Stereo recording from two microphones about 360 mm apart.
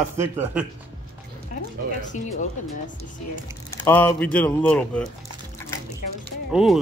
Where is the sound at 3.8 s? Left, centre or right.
Centre.